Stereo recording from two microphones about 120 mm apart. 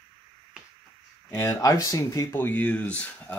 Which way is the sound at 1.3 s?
20° left (ahead or behind).